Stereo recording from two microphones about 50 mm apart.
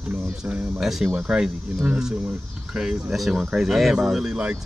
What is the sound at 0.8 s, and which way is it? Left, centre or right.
Speech, centre.